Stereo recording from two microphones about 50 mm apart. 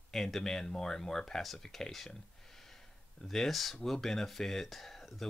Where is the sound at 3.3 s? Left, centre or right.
Centre.